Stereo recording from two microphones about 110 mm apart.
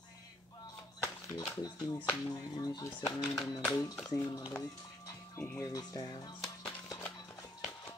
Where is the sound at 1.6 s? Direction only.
35° left (ahead or behind).